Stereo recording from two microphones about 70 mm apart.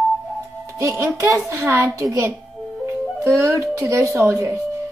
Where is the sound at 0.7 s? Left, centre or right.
Right.